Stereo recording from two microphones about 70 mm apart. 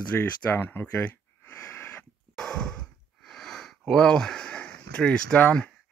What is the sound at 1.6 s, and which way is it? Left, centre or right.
Wheeze, left.